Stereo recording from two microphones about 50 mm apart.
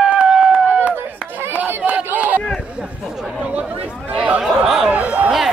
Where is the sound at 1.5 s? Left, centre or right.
Right.